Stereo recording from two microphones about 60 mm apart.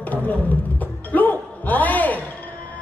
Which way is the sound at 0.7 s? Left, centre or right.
Left.